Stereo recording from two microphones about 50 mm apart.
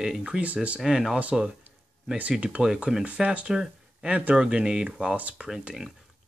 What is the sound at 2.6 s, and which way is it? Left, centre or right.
Speech, centre.